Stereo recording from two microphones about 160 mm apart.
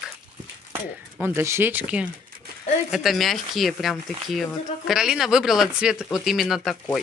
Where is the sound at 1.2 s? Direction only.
15° right (ahead or behind).